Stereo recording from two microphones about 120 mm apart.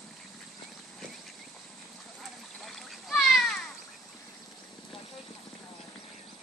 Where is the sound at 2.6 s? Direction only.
Centre (ahead or behind).